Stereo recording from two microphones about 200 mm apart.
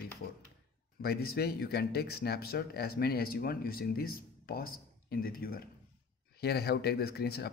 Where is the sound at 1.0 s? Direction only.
50° left (ahead or behind).